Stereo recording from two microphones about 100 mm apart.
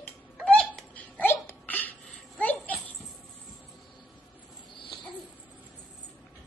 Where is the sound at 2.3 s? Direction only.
15° left (ahead or behind).